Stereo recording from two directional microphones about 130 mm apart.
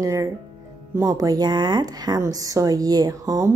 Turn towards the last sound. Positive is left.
turn(degrees=-25)  # may be behind; listen again after turning